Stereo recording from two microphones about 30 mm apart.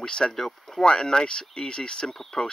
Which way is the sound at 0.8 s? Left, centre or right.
Left.